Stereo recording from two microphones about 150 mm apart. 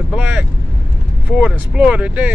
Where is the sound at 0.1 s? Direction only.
10° right (ahead or behind).